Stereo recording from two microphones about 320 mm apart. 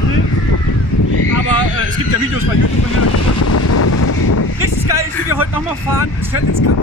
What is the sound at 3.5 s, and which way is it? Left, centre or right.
Vehicle, left.